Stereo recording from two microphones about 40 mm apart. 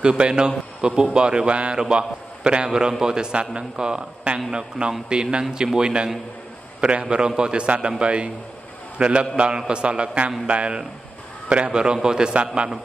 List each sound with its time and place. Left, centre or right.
0.0 s a man's voice: right
7.6 s a man's voice: right